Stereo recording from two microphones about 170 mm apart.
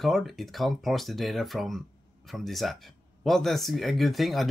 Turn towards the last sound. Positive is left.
turn(degrees=0)  # may be behind; listen again after turning